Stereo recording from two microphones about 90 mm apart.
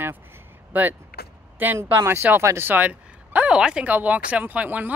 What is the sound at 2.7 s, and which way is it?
Speech, 20° right (ahead or behind).